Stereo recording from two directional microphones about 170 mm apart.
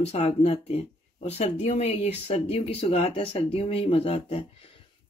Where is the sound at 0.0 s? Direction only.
40° left (ahead or behind).